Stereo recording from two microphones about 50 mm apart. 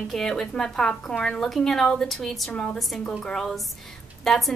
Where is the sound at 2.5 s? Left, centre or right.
Left.